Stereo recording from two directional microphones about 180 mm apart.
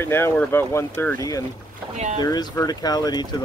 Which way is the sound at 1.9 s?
40° right (ahead or behind).